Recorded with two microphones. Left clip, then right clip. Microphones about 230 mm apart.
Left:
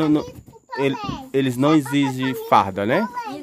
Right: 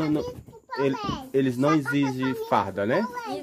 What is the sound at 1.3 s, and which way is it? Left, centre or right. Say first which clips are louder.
Speech: left 5 dB; left.